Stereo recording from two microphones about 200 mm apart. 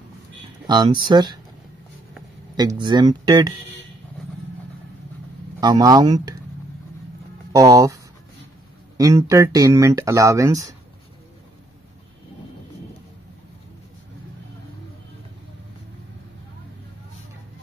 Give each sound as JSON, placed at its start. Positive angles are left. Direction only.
{"t": 0.7, "sound": "speech", "side_deg": -20}
{"t": 2.5, "sound": "speech", "side_deg": -20}
{"t": 5.6, "sound": "speech", "side_deg": -20}
{"t": 7.5, "sound": "speech", "side_deg": -15}